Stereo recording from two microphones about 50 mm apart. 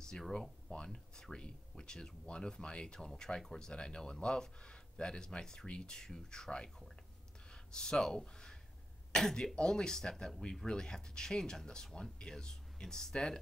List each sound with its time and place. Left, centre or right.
0.3 s speech: centre
7.7 s speech: centre